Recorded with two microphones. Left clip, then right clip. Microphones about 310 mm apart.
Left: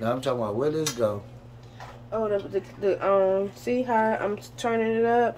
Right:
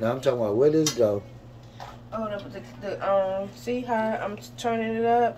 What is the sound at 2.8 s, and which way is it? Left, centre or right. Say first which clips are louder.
Speech: left 2 dB; left.